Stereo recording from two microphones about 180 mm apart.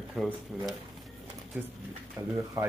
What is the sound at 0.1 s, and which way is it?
Speech, centre (ahead or behind).